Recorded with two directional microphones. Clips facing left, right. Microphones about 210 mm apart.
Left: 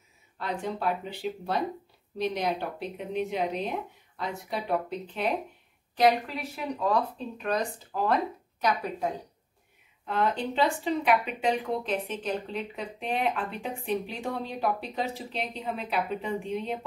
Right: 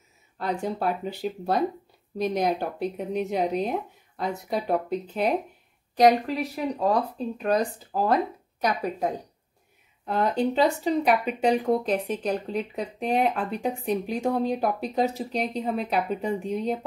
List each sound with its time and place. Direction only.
0.4 s speech: 40° right (ahead or behind)
10.0 s speech: 40° right (ahead or behind)